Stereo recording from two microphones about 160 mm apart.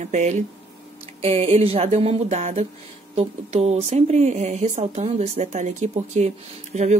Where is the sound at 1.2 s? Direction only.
40° right (ahead or behind).